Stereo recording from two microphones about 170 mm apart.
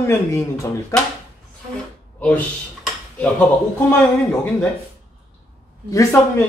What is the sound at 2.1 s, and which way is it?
Speech, 10° left (ahead or behind).